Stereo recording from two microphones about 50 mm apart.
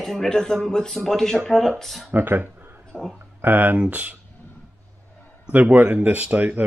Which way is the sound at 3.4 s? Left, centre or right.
Right.